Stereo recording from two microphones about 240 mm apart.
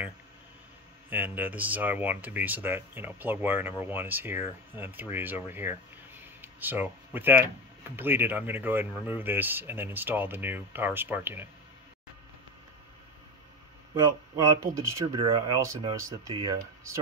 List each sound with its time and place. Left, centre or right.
1.1 s speech: centre
14.3 s speech: centre